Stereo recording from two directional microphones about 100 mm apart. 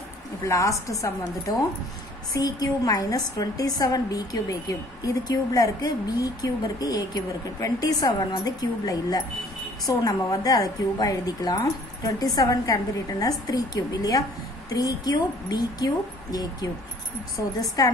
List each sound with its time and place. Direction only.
0.5 s a woman's voice: 30° left (ahead or behind)
2.3 s a woman's voice: 35° left (ahead or behind)